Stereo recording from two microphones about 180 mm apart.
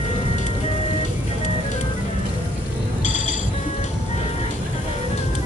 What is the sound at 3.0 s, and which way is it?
Music, 40° left (ahead or behind).